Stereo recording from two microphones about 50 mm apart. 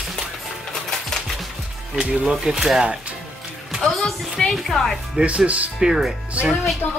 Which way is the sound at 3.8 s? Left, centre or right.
Centre.